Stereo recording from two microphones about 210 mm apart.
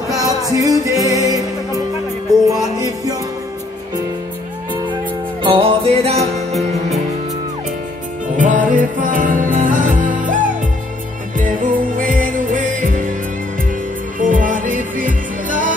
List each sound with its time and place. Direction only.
0.1 s music: 15° right (ahead or behind)
5.4 s music: 25° right (ahead or behind)
8.4 s music: 40° right (ahead or behind)
14.2 s music: 40° right (ahead or behind)